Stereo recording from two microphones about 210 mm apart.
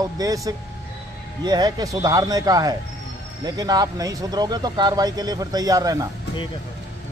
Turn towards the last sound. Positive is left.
turn(degrees=-15)  # may be behind; listen again after turning